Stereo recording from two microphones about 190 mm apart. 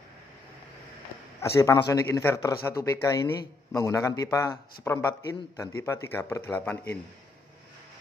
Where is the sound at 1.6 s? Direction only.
15° left (ahead or behind).